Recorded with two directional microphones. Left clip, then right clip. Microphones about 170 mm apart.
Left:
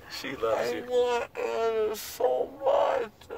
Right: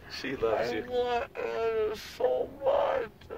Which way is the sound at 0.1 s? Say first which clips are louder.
Even; 40° right (ahead or behind).